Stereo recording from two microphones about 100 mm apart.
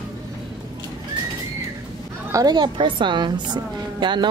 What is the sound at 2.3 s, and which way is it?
A woman's voice, 45° right (ahead or behind).